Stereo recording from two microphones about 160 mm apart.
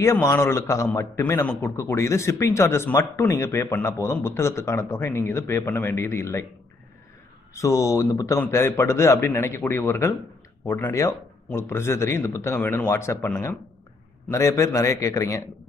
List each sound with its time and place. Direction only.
0.0 s a man's voice: 20° left (ahead or behind)
7.5 s a man's voice: 20° left (ahead or behind)
14.3 s a man's voice: 20° left (ahead or behind)